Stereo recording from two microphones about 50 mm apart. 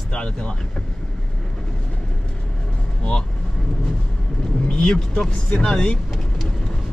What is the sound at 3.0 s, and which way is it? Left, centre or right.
Speech, centre.